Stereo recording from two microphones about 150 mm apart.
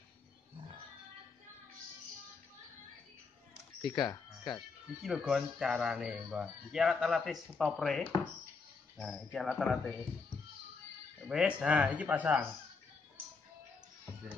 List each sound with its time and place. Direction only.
3.9 s speech: 30° left (ahead or behind)
5.0 s speech: 5° right (ahead or behind)
11.2 s speech: 5° right (ahead or behind)